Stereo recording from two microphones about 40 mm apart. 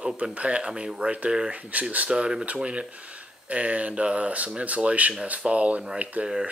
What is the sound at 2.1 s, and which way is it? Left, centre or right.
Speech, centre.